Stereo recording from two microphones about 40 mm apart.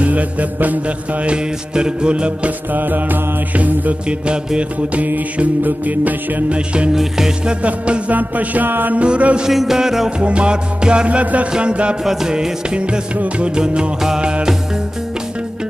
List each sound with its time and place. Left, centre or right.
0.0 s music: right
2.7 s mantra: right
6.5 s music: right
6.9 s music: centre
7.6 s music: right
8.1 s mantra: right
8.9 s music: right
9.5 s music: centre
10.1 s music: right
11.1 s music: right
12.0 s music: centre